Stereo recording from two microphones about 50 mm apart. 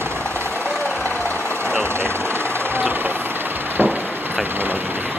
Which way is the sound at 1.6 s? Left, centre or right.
Right.